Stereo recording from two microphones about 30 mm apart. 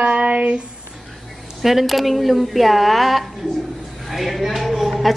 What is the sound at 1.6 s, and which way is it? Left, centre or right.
A woman's voice, centre.